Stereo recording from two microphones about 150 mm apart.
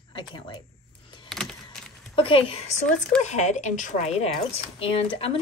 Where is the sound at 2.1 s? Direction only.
40° left (ahead or behind).